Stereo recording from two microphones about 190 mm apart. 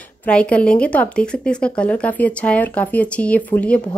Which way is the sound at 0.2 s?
5° left (ahead or behind).